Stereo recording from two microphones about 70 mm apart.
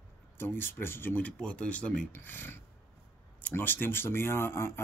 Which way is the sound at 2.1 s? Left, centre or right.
Left.